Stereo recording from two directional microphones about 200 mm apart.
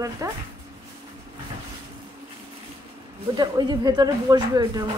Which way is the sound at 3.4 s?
20° right (ahead or behind).